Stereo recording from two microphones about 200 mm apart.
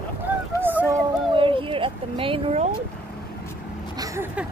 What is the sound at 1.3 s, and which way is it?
Speech, 25° right (ahead or behind).